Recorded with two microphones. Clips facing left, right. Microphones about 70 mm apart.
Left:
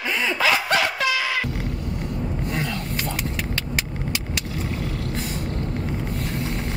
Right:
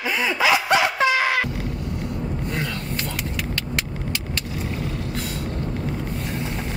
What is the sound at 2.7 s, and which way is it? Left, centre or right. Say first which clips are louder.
Vehicle: left 1 dB; left.